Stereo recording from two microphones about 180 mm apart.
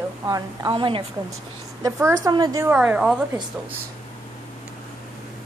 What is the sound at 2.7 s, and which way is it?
Speech, 5° right (ahead or behind).